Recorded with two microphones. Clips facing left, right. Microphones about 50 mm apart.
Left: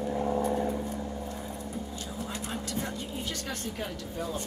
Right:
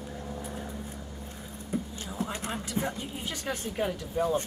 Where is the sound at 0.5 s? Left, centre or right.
Left.